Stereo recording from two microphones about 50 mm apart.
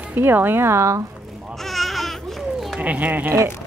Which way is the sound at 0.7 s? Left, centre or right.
Right.